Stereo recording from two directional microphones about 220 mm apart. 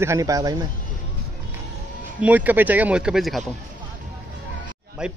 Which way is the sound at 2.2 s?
5° right (ahead or behind).